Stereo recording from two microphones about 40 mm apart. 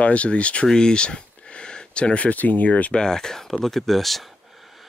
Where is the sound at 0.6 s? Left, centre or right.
Centre; by 3.0 s left.